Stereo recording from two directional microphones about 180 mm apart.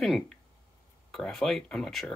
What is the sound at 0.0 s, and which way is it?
Speech, centre (ahead or behind).